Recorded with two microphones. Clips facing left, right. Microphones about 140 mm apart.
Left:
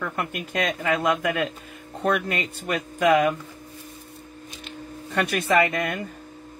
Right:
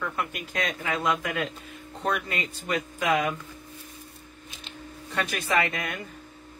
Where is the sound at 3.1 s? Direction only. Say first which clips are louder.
Left 5 dB; 40° left (ahead or behind).